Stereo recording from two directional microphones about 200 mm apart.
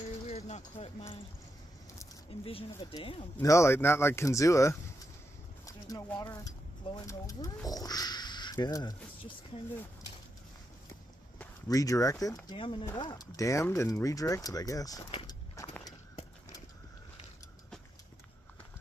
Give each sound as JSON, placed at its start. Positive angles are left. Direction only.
{"t": 0.3, "sound": "a sound", "side_deg": 35}
{"t": 2.4, "sound": "speech", "side_deg": 25}
{"t": 3.3, "sound": "speech", "side_deg": 15}
{"t": 11.3, "sound": "speech", "side_deg": 15}